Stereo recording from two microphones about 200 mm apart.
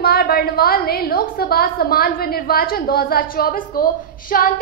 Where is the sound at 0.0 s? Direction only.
50° left (ahead or behind).